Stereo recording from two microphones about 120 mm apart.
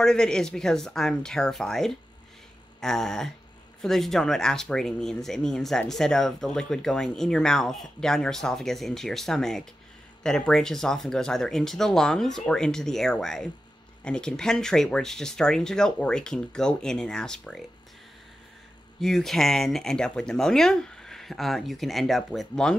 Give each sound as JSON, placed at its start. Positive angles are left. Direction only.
{"t": 0.0, "sound": "speech", "side_deg": 5}
{"t": 18.9, "sound": "speech", "side_deg": 0}